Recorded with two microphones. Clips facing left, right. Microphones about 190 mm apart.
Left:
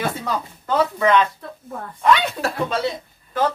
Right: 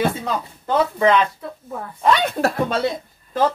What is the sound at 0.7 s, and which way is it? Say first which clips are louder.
Speech: right 1 dB; 25° right (ahead or behind).